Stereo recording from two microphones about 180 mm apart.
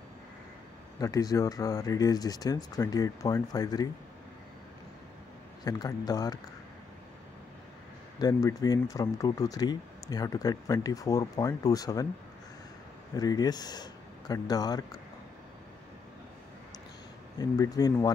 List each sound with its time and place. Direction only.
0.9 s speech: 20° left (ahead or behind)
5.6 s speech: 20° left (ahead or behind)
8.2 s speech: 20° left (ahead or behind)
13.1 s speech: 20° left (ahead or behind)
17.4 s speech: 20° left (ahead or behind)